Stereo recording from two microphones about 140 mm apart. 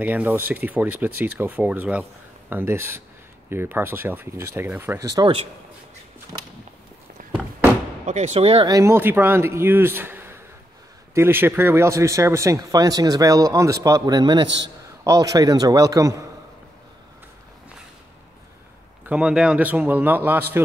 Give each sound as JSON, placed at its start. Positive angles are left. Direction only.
{"t": 0.0, "sound": "speech", "side_deg": -10}
{"t": 8.0, "sound": "speech", "side_deg": -55}
{"t": 8.6, "sound": "speech", "side_deg": -20}
{"t": 19.0, "sound": "speech", "side_deg": -5}